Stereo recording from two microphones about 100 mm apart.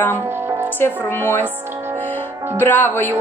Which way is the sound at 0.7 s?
20° left (ahead or behind).